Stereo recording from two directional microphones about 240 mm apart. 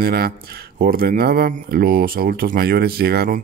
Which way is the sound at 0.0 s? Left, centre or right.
Right.